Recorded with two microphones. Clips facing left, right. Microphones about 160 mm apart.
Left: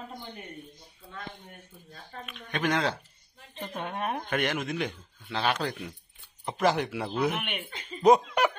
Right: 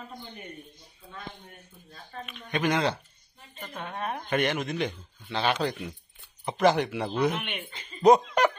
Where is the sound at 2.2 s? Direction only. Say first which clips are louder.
Right 2 dB; centre (ahead or behind).